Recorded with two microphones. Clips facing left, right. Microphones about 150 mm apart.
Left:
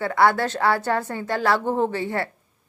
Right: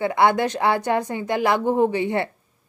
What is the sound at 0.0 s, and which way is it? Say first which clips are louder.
A woman's voice: right 1 dB; 20° right (ahead or behind).